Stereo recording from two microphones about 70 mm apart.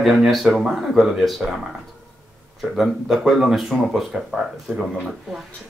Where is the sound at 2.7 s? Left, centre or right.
Centre.